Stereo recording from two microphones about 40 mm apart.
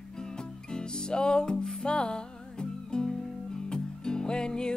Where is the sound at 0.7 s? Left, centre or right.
Left.